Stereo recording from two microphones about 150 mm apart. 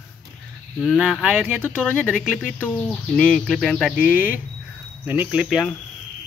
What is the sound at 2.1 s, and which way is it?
Speech, 10° right (ahead or behind).